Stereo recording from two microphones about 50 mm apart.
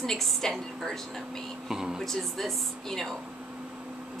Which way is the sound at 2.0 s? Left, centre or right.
Centre.